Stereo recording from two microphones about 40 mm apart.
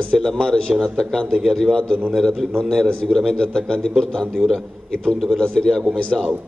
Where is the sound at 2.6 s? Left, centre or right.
Centre.